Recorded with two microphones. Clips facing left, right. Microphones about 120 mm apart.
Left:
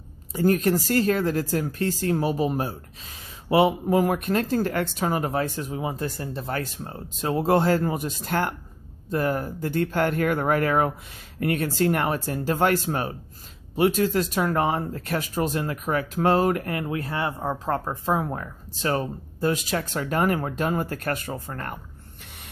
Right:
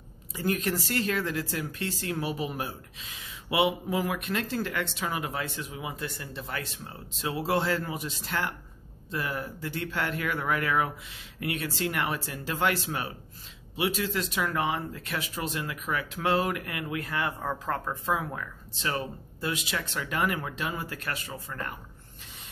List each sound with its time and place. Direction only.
0.3 s speech: 40° left (ahead or behind)